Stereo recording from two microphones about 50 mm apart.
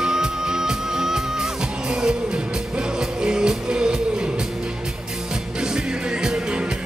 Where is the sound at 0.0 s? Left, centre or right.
Centre.